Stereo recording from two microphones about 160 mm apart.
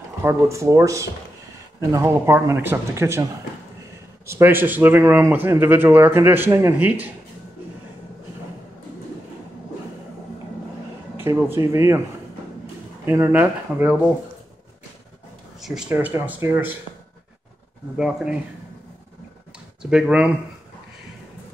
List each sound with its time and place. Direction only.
0.2 s speech: 20° right (ahead or behind)
4.3 s speech: 15° right (ahead or behind)
11.1 s speech: 15° right (ahead or behind)
13.0 s speech: 15° right (ahead or behind)
15.6 s speech: 5° right (ahead or behind)
17.9 s speech: 5° right (ahead or behind)
19.8 s speech: 5° right (ahead or behind)